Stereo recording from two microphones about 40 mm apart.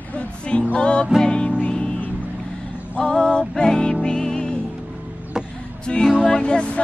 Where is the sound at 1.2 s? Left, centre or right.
Left.